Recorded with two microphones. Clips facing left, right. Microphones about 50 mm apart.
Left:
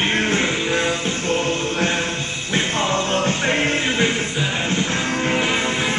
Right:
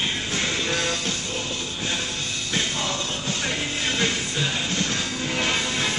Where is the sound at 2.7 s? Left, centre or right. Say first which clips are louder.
Left 8 dB; left.